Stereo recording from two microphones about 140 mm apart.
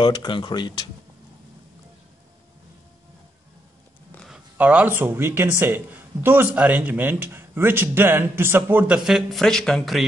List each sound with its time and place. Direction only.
0.0 s speech: 30° left (ahead or behind)
4.3 s speech: 10° right (ahead or behind)